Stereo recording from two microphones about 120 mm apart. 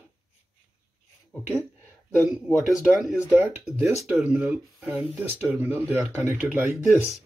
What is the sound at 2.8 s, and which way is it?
Speech, 5° right (ahead or behind).